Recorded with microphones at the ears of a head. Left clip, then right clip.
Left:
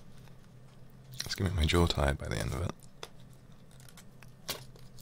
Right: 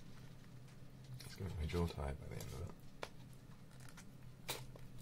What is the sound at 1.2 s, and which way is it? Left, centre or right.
Speech, left.